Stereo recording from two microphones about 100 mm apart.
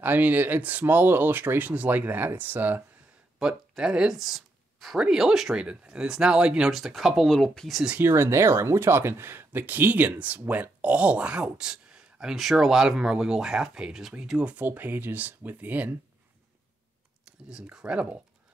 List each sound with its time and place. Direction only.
0.0 s speech: 20° right (ahead or behind)
3.3 s speech: 5° right (ahead or behind)
8.0 s speech: 25° right (ahead or behind)
17.5 s speech: 5° right (ahead or behind)